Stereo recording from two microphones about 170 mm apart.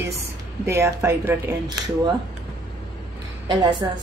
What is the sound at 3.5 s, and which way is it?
Speech, 25° right (ahead or behind).